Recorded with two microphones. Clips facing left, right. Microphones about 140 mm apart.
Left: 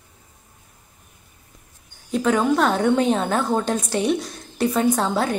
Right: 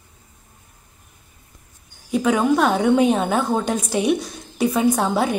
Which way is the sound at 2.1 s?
5° right (ahead or behind).